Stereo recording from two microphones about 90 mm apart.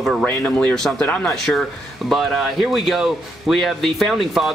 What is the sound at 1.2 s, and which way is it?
Speech, 5° left (ahead or behind).